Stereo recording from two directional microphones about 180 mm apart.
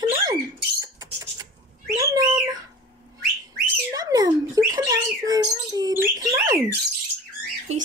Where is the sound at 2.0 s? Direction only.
15° right (ahead or behind).